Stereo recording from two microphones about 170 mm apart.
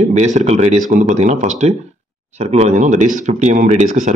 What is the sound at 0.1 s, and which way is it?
Speech, 45° right (ahead or behind).